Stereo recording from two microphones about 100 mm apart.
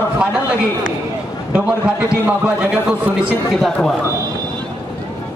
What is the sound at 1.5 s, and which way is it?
A man's voice, 15° right (ahead or behind).